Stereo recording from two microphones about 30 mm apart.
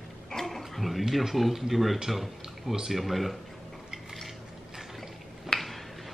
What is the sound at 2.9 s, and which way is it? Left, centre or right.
Speech, centre.